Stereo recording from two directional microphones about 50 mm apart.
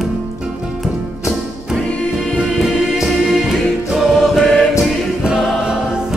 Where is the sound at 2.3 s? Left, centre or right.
Centre.